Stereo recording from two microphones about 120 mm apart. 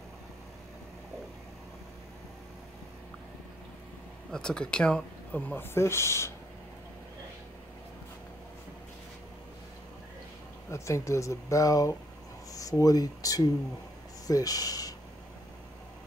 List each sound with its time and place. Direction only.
4.3 s speech: 5° left (ahead or behind); by 6.3 s 20° left (ahead or behind)
10.7 s speech: 25° left (ahead or behind)